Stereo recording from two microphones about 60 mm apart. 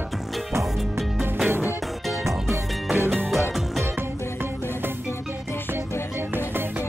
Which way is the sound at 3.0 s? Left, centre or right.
Right.